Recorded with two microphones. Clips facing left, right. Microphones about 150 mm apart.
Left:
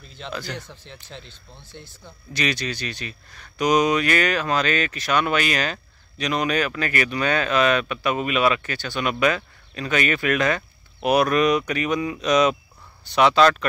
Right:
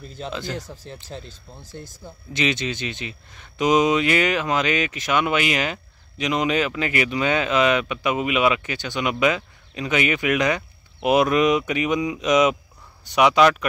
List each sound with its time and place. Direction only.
0.3 s speech: 20° right (ahead or behind)
1.6 s speech: 40° right (ahead or behind)
2.3 s speech: 20° right (ahead or behind)